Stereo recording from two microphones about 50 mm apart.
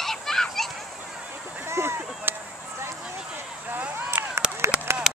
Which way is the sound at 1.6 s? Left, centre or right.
Right.